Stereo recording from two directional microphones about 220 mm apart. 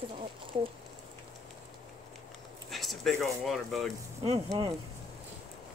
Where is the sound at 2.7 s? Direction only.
Centre (ahead or behind).